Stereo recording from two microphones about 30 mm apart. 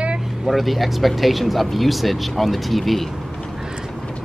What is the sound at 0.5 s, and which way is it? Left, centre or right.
Speech, centre.